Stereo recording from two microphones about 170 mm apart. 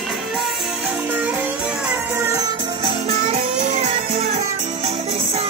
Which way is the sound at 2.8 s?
35° right (ahead or behind).